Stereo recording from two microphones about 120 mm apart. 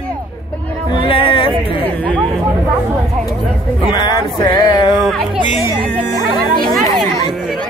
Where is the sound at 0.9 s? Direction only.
45° left (ahead or behind).